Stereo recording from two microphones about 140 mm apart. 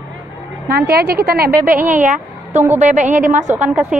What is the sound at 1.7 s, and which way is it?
A woman's voice, 70° right (ahead or behind).